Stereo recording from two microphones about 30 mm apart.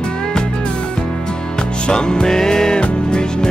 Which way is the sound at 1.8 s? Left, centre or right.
Left.